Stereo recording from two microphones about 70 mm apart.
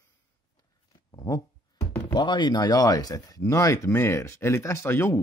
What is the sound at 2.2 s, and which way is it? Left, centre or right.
Speech, left.